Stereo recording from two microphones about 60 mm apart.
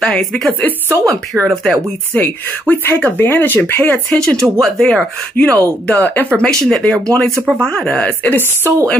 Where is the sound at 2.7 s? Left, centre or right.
Left.